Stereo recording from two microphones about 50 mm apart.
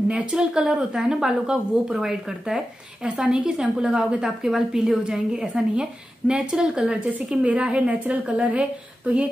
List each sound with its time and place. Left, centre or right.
0.1 s speech: centre